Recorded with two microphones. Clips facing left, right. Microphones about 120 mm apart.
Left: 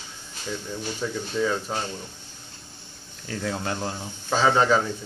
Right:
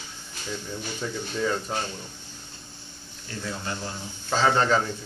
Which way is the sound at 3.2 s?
80° left.